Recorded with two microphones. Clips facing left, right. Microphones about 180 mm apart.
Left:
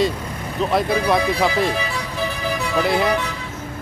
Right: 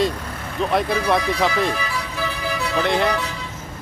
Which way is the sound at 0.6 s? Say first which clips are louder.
Left 1 dB; centre (ahead or behind).